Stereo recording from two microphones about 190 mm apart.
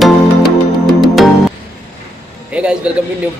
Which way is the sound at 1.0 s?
Centre (ahead or behind).